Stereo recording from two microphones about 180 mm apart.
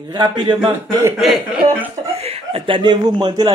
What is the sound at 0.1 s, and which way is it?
Speech, 25° right (ahead or behind).